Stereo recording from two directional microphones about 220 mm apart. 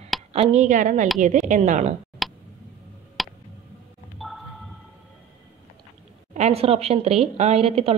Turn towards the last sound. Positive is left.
turn(degrees=-25)  # may be behind; listen again after turning